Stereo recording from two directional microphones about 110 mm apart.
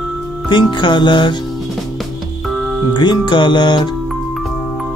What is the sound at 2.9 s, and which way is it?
Music, 40° left (ahead or behind).